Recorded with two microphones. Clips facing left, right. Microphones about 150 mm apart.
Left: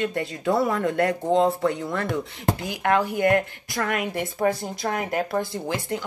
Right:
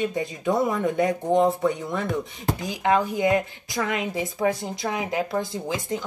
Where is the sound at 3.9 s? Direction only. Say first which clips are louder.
Left 1 dB; 60° left (ahead or behind).